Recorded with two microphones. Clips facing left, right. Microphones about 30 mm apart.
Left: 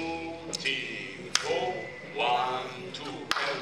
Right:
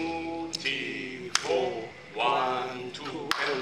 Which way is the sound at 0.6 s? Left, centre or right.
Centre.